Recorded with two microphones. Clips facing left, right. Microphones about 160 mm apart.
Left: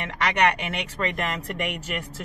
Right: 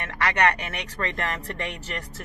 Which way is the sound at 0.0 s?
15° left (ahead or behind).